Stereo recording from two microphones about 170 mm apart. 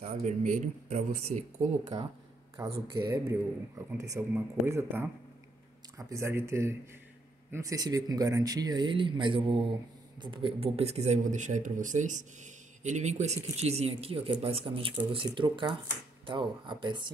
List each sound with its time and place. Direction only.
0.0 s speech: 45° right (ahead or behind)
2.7 s speech: 25° right (ahead or behind)